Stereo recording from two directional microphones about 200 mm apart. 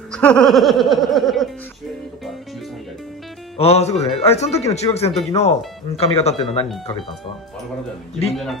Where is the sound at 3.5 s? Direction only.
30° left (ahead or behind).